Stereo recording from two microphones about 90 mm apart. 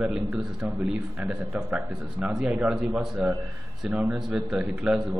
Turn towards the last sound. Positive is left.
turn(degrees=-10)  # may be behind; listen again after turning